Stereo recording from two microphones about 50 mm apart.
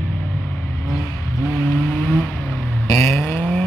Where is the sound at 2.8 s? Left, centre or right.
Left.